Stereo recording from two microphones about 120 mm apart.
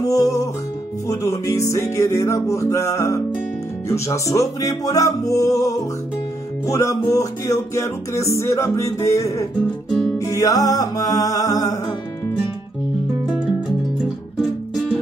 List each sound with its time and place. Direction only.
0.0 s music: 30° left (ahead or behind)